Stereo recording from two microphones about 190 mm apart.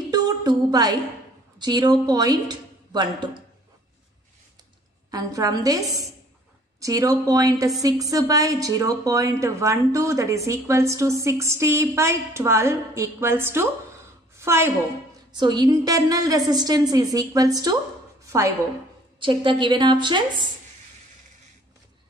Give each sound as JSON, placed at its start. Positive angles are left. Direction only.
{"t": 0.1, "sound": "a woman's voice", "side_deg": -20}
{"t": 5.1, "sound": "a woman's voice", "side_deg": -20}
{"t": 14.3, "sound": "a sound", "side_deg": -15}
{"t": 15.3, "sound": "a woman's voice", "side_deg": -20}
{"t": 18.2, "sound": "a sound", "side_deg": -15}
{"t": 19.1, "sound": "a woman's voice", "side_deg": -25}